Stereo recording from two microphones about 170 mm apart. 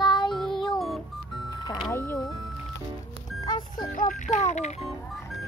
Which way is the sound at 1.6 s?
25° left (ahead or behind).